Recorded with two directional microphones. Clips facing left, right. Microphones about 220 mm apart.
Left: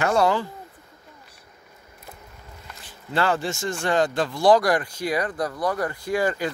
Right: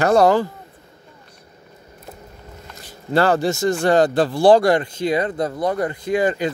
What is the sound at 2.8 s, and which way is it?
Speech, 40° right (ahead or behind).